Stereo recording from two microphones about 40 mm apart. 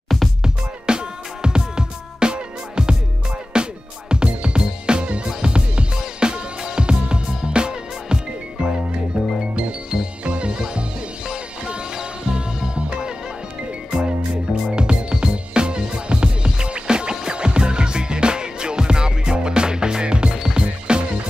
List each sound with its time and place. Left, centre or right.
0.4 s music: right